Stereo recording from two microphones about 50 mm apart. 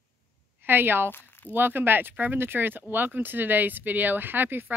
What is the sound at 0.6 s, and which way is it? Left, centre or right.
A woman's voice, right.